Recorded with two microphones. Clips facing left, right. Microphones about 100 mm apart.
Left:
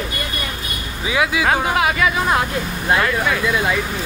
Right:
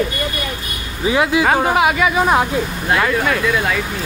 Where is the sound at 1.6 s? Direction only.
10° right (ahead or behind).